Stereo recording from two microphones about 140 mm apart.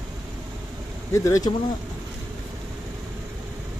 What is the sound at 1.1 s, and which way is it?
Speech, 20° left (ahead or behind).